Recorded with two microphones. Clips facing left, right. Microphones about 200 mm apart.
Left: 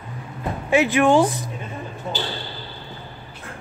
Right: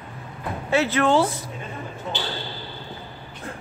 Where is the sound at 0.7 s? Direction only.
15° left (ahead or behind).